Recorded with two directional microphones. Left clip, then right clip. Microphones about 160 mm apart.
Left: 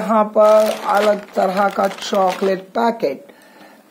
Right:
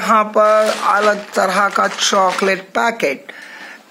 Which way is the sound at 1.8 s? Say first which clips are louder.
Right 2 dB; 20° right (ahead or behind).